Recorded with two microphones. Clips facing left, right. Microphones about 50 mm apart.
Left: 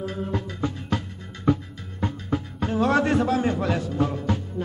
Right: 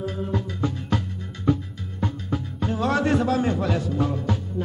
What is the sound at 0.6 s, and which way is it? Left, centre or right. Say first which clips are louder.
Music: right 1 dB; centre.